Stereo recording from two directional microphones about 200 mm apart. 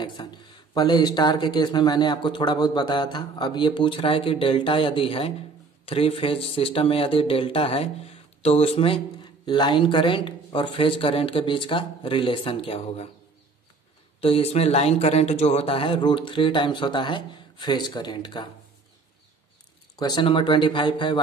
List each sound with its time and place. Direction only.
0.2 s speech: 25° left (ahead or behind)
14.2 s speech: 30° left (ahead or behind)
20.0 s speech: 20° left (ahead or behind)